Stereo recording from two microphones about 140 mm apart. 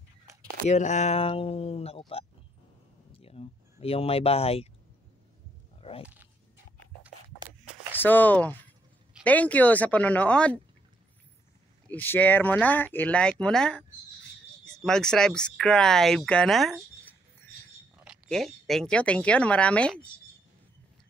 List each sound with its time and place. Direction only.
0.7 s speech: 55° left (ahead or behind)
5.8 s a sound: 40° left (ahead or behind)
7.9 s speech: 15° left (ahead or behind)
11.9 s speech: 15° left (ahead or behind)
18.0 s speech: centre (ahead or behind)